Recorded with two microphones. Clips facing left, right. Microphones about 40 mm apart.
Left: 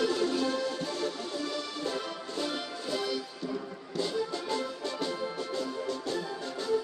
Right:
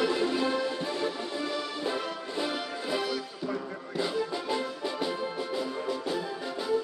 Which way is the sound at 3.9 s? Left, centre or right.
Centre.